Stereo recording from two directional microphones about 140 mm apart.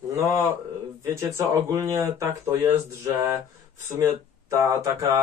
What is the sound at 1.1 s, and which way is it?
Speech, 20° right (ahead or behind).